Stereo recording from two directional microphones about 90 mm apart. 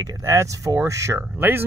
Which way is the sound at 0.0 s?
35° right (ahead or behind).